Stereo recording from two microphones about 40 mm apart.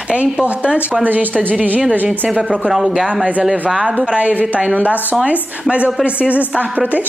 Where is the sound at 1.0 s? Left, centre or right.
Right.